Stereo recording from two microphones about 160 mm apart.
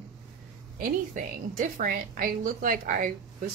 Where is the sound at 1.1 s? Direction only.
50° right (ahead or behind).